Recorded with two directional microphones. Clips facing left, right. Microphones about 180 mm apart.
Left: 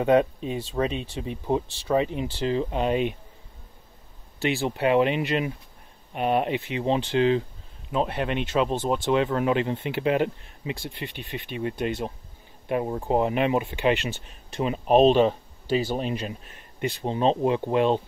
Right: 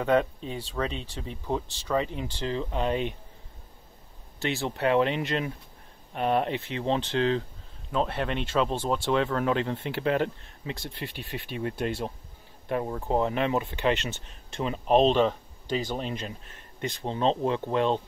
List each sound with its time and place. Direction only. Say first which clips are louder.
0.0 s speech: left 4 dB; 15° left (ahead or behind)
4.6 s speech: left 2 dB; 5° left (ahead or behind)
12.6 s speech: left 3 dB; 15° left (ahead or behind)